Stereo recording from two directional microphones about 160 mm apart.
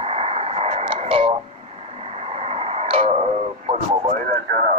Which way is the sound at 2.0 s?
40° right (ahead or behind).